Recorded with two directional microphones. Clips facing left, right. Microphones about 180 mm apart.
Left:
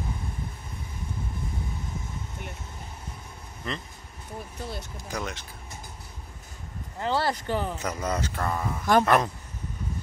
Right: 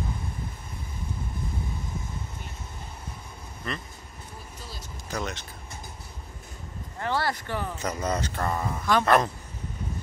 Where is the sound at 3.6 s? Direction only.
15° left (ahead or behind).